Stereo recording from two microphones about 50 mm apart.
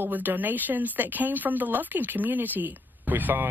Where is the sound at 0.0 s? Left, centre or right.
Right.